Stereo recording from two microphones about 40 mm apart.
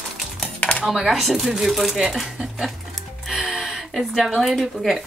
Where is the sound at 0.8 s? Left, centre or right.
Centre.